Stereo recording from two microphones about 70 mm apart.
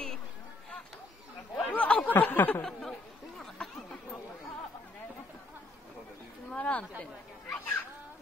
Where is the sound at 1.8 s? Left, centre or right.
Centre.